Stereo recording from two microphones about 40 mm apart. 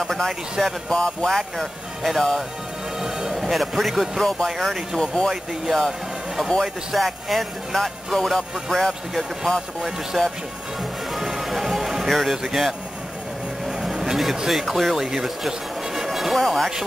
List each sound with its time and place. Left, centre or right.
0.0 s speech: centre
3.0 s music: centre
3.3 s speech: centre
5.0 s speech: centre
5.3 s speech: centre
5.9 s a sound: centre
6.6 s speech: centre
9.8 s speech: centre
11.1 s music: centre
12.1 s speech: centre
13.7 s vehicle: centre
14.5 s speech: centre